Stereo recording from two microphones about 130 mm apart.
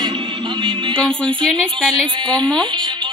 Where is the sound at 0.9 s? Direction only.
5° left (ahead or behind).